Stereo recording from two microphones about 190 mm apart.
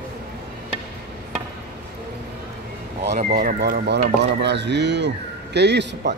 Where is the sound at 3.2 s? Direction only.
45° right (ahead or behind).